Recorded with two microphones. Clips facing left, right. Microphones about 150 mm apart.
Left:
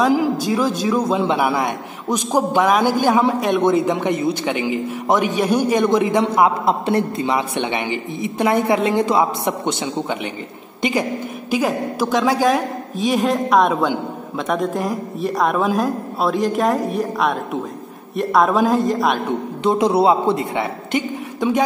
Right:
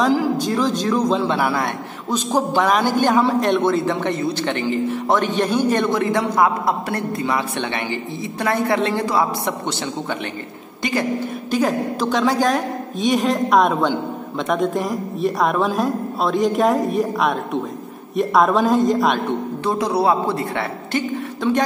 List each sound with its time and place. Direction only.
0.1 s a man's voice: 15° left (ahead or behind)
11.5 s speech: 10° left (ahead or behind)
19.6 s a man's voice: 20° left (ahead or behind)